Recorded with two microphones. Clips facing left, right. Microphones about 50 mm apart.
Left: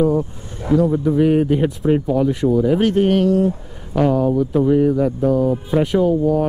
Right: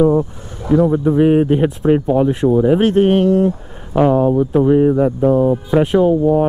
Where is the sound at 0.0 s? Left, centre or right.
Right.